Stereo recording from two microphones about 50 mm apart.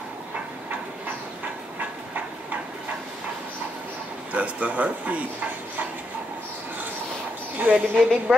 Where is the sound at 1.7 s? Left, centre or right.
Right.